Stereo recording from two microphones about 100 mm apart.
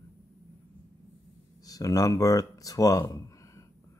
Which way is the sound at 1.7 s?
35° left (ahead or behind).